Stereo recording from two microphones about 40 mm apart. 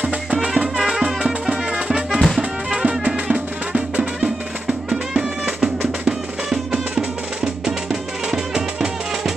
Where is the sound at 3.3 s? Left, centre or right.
Right.